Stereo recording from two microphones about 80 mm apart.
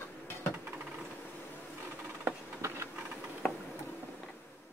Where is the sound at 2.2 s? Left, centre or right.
Right.